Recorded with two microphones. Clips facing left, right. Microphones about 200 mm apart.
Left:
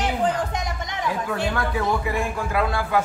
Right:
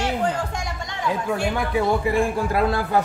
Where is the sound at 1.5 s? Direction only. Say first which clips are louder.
Right 3 dB; 20° right (ahead or behind).